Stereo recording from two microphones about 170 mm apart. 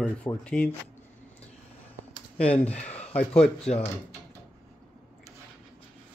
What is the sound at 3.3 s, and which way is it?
Speech, 5° left (ahead or behind).